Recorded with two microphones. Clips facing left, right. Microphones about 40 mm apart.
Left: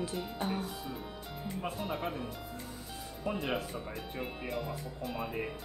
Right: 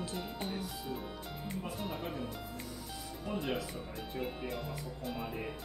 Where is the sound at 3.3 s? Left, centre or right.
Left.